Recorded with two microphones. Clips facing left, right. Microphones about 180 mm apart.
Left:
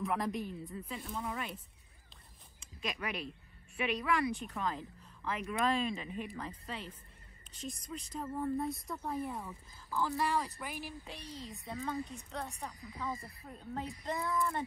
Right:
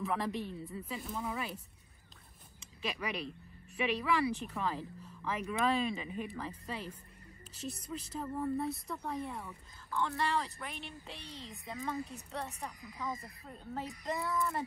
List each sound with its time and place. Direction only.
0.0 s a woman's voice: centre (ahead or behind)
2.8 s a woman's voice: centre (ahead or behind)
12.8 s speech: 35° left (ahead or behind)
13.5 s a woman's voice: centre (ahead or behind)